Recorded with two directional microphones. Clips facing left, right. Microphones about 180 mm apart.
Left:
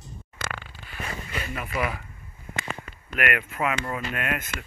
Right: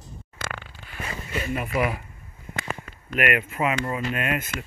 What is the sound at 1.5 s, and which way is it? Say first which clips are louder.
Speech: right 4 dB; 25° right (ahead or behind).